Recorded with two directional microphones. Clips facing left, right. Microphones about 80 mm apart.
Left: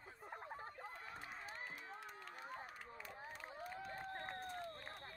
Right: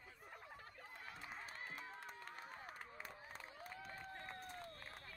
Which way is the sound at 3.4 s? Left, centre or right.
Left.